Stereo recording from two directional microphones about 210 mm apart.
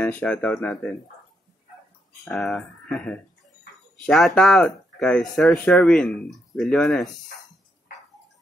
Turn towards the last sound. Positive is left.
turn(degrees=0)  # may be behind; listen again after turning